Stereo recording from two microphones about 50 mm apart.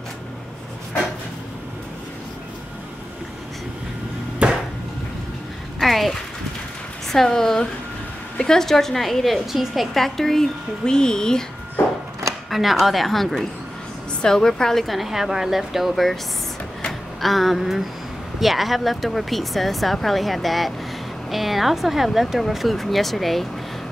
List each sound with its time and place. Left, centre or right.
4.4 s chop: right
5.8 s a sound: centre
7.1 s a woman's voice: centre
12.4 s speech: centre
17.2 s speech: centre